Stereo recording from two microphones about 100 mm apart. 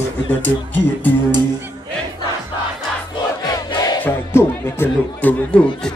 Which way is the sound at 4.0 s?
25° left (ahead or behind).